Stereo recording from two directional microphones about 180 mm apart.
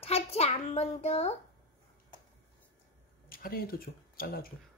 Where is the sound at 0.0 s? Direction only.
35° left (ahead or behind).